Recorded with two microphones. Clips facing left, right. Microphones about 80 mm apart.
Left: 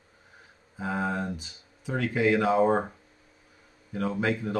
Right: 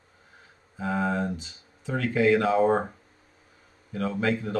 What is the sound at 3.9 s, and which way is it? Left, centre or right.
Speech, centre.